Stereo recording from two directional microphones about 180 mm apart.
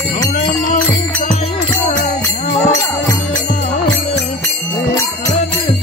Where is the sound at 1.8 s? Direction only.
40° left (ahead or behind).